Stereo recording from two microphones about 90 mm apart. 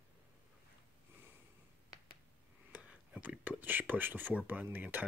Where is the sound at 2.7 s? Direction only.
15° right (ahead or behind).